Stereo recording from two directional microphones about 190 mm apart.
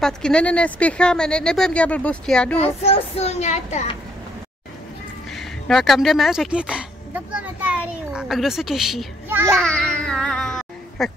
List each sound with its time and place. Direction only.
0.0 s speech: 5° left (ahead or behind)
2.6 s child singing: 35° left (ahead or behind)
5.3 s speech: centre (ahead or behind)